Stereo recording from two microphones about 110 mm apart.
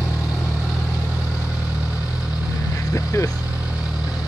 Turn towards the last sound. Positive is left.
turn(degrees=25)  # may be behind; listen again after turning